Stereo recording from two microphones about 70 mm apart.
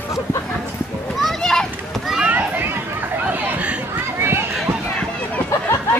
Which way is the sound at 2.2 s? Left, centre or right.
Right.